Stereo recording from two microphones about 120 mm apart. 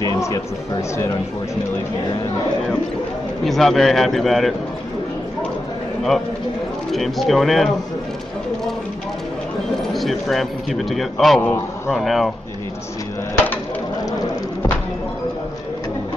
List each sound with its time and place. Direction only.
0.0 s music: 30° left (ahead or behind)
3.4 s speech: centre (ahead or behind)
6.9 s speech: centre (ahead or behind)
9.9 s speech: centre (ahead or behind)